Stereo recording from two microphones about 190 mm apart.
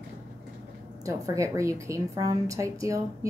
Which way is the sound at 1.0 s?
15° right (ahead or behind).